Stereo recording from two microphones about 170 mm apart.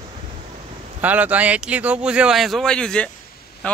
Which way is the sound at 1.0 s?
10° right (ahead or behind).